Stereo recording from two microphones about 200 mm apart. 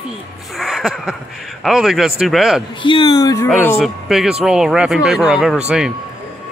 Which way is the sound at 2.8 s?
25° left (ahead or behind).